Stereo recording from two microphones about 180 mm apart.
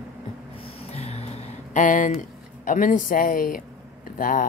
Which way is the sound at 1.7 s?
45° left (ahead or behind).